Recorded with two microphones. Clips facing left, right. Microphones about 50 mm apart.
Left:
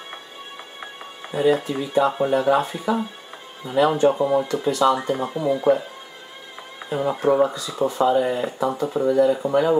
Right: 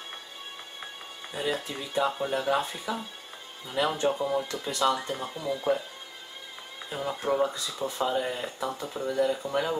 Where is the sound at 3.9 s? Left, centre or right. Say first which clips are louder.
Left 9 dB; centre.